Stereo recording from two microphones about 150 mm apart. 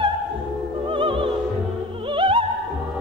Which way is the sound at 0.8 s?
35° right (ahead or behind).